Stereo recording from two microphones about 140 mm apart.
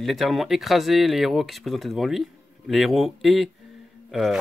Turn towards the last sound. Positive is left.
turn(degrees=0)  # may be behind; listen again after turning